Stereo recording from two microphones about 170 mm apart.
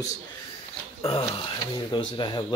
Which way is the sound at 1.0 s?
30° left (ahead or behind).